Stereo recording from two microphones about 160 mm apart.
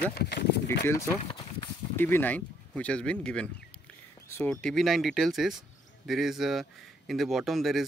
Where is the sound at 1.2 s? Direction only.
25° left (ahead or behind).